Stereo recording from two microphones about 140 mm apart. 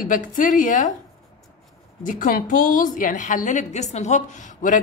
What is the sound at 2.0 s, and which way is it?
A woman's voice, 70° left (ahead or behind).